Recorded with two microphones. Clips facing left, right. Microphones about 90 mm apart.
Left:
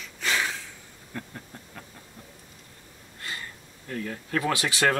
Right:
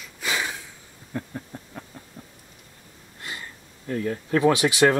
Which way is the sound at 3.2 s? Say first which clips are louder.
Even; 20° right (ahead or behind).